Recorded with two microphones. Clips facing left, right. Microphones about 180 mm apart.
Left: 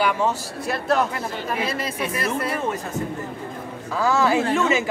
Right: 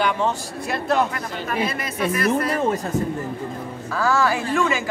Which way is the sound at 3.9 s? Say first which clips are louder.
Left 1 dB; 20° left (ahead or behind).